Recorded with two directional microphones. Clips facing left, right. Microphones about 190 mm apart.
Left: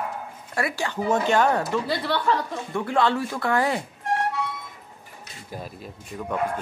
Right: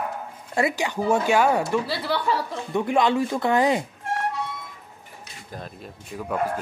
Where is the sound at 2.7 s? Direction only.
15° right (ahead or behind).